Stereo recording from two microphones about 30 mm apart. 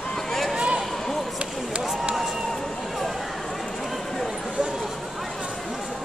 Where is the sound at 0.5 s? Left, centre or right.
Right.